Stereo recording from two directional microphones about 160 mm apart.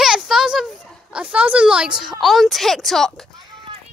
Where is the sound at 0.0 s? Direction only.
5° right (ahead or behind).